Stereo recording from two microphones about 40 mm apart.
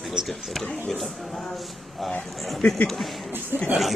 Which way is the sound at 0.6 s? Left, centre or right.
Centre.